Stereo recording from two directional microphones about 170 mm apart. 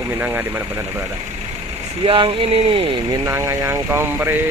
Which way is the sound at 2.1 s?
30° right (ahead or behind).